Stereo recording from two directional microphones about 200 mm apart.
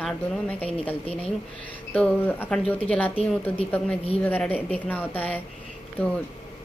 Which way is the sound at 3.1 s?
30° left (ahead or behind).